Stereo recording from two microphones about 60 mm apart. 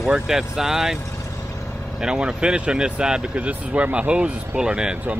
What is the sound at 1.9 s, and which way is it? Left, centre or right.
Speech, centre.